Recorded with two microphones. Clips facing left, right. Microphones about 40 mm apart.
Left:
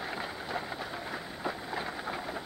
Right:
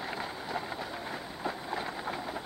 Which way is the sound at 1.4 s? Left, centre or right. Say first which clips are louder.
Right 1 dB; centre.